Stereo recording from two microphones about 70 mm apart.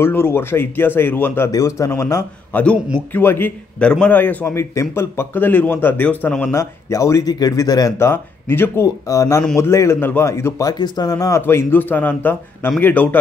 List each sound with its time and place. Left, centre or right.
0.0 s speech: left
1.5 s speech: left
2.5 s speech: left
3.8 s a man's voice: centre
4.6 s speech: left
6.0 s speech: centre
6.5 s speech: left
7.3 s speech: left
8.0 s speech: left
8.8 s speech: left
9.6 s speech: left
10.6 s speech: left
11.4 s speech: left